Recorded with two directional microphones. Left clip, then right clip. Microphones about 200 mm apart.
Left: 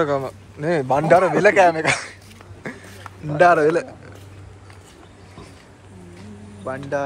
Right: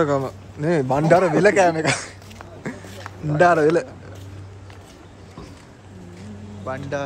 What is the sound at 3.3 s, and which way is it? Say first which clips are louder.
Speech: left 1 dB; 5° right (ahead or behind).